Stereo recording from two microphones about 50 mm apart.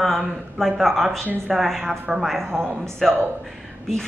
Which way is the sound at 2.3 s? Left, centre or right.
Centre.